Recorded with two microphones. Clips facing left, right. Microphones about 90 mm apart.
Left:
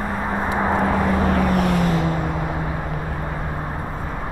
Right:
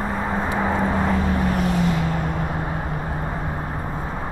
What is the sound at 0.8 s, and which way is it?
Vehicle, 60° left (ahead or behind).